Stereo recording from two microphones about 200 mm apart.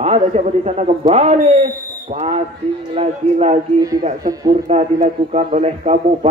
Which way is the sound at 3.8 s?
15° right (ahead or behind).